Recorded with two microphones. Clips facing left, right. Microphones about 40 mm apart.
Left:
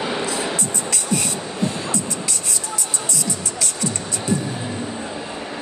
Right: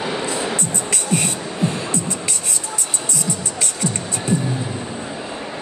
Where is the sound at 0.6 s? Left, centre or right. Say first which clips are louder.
Right 1 dB; right.